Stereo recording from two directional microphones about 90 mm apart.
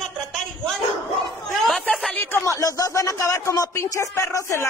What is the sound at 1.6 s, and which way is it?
Chatter, centre (ahead or behind).